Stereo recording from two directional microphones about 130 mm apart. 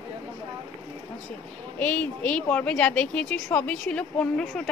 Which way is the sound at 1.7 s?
10° left (ahead or behind).